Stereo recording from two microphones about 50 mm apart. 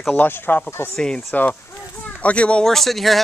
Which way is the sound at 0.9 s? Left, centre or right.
Centre.